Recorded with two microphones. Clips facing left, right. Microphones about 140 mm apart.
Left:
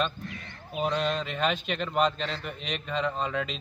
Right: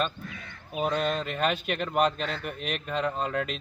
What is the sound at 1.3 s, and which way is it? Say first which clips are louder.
Speech: right 1 dB; 5° right (ahead or behind).